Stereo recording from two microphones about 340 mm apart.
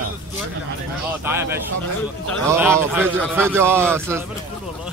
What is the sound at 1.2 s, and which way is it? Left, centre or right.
Speech, centre.